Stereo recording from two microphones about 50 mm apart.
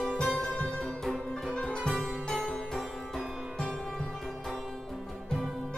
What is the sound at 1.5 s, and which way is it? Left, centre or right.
Music, centre.